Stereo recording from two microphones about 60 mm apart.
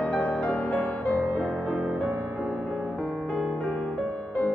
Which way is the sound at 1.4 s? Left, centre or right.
Centre.